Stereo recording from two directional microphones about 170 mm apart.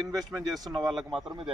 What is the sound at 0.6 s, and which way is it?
Speech, centre (ahead or behind).